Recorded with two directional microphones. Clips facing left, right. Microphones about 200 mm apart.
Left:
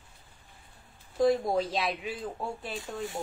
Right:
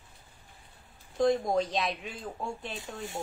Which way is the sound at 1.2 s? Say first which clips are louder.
Left 1 dB; 5° left (ahead or behind).